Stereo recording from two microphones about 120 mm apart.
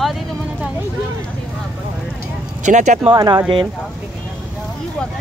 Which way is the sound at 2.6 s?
85° right.